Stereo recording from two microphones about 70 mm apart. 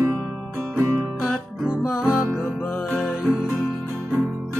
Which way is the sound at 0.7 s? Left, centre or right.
Right.